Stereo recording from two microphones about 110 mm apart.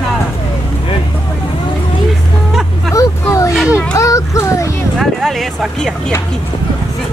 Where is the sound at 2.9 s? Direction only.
30° left (ahead or behind).